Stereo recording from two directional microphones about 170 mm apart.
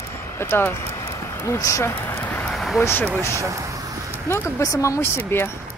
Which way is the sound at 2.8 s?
15° left (ahead or behind).